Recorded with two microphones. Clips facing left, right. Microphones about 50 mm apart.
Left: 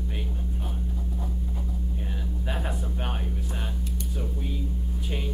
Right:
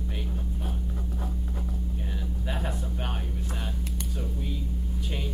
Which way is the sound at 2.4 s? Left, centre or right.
Centre.